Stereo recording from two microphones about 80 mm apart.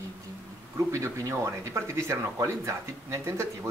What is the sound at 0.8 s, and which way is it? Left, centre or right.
Speech, right.